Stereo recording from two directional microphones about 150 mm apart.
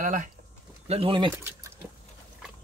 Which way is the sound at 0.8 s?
35° right (ahead or behind).